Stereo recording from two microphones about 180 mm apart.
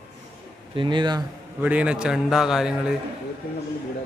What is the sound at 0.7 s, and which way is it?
Speech, 25° right (ahead or behind).